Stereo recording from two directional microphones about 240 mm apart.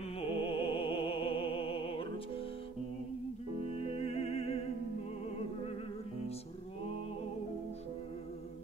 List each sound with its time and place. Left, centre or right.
0.3 s music: left
3.9 s music: left